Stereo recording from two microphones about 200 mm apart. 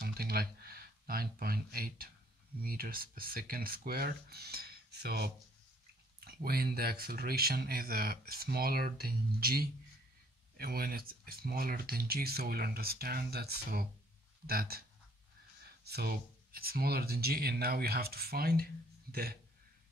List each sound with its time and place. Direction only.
0.0 s speech: 50° right (ahead or behind)